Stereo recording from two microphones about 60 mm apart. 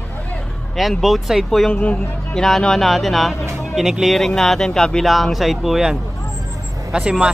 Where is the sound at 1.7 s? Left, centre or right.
Left.